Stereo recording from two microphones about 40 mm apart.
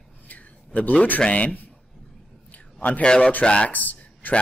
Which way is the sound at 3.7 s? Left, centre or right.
Left.